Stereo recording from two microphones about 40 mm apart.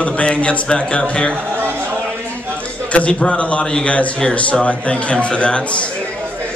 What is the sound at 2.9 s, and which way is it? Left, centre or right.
A man's voice, left.